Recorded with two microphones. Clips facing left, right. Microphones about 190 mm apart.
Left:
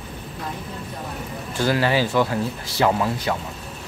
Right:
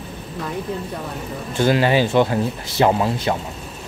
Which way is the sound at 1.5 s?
20° right (ahead or behind).